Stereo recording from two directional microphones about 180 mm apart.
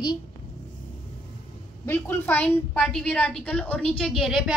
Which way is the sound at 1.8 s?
10° left (ahead or behind).